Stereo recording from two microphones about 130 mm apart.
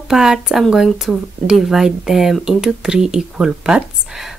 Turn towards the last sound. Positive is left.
turn(degrees=0)  # may be behind; listen again after turning